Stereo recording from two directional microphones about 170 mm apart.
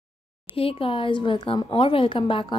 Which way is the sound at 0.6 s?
35° left (ahead or behind).